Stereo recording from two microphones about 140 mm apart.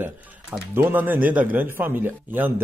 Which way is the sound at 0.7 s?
15° right (ahead or behind).